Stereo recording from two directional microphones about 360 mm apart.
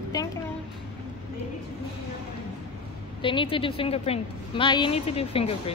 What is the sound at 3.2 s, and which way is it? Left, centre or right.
A woman's voice, centre.